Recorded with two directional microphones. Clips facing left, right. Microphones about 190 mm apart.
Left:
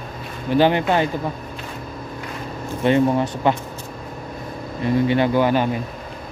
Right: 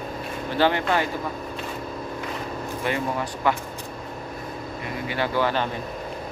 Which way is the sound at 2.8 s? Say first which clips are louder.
Left 10 dB; 25° left (ahead or behind).